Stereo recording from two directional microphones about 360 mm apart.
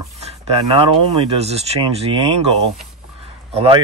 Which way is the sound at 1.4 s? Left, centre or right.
Centre.